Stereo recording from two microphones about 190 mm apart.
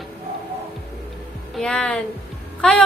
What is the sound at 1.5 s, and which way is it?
Speech, 5° left (ahead or behind).